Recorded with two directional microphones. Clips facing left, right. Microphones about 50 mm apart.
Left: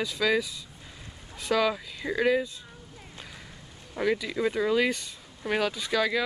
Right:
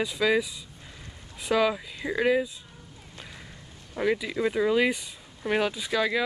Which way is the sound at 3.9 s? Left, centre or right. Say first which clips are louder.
Right 1 dB; centre.